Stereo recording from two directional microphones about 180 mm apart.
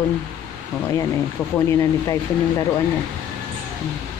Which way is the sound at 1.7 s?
15° left (ahead or behind).